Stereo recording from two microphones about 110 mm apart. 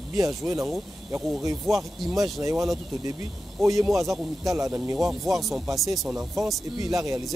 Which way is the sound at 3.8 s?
Centre (ahead or behind).